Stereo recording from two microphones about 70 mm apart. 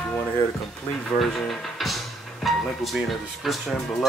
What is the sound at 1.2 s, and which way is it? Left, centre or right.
Speech, centre.